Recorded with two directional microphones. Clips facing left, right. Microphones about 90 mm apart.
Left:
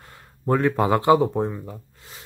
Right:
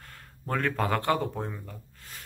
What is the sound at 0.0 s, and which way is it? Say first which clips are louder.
Speech: left 12 dB; 20° left (ahead or behind).